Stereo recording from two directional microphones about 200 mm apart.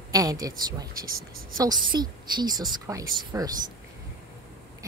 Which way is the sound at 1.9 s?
20° right (ahead or behind).